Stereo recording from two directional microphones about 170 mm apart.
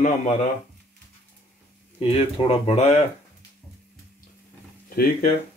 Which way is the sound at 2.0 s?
35° left (ahead or behind).